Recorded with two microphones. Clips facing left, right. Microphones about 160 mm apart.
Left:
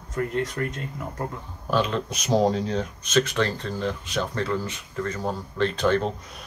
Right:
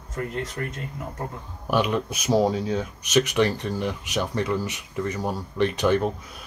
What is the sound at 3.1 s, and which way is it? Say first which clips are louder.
Speech: right 2 dB; 15° right (ahead or behind).